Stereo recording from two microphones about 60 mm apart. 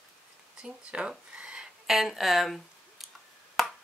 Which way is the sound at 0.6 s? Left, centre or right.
Centre.